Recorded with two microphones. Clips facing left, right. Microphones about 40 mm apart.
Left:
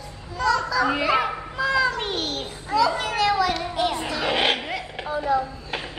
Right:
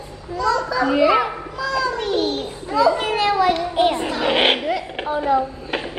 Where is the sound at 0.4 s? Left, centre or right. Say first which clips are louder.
Right 2 dB; right.